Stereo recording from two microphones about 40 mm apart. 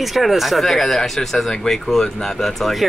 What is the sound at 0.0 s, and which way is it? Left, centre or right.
Speech, centre.